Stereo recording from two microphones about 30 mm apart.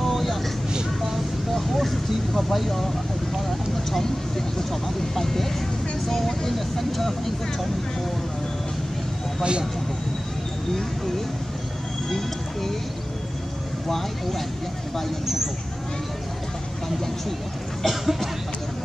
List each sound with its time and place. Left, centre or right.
0.0 s vehicle: centre
0.8 s a sound: centre
4.0 s speech: centre
9.4 s speech: right
12.1 s speech: centre
13.8 s speech: centre
17.8 s speech: centre